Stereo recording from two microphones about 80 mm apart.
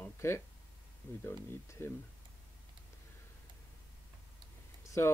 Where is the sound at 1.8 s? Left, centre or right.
Left.